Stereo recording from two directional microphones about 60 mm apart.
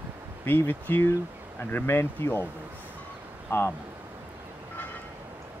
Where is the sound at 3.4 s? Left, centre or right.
Left.